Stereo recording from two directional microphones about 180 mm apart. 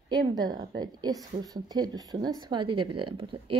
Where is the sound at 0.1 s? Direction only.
25° right (ahead or behind).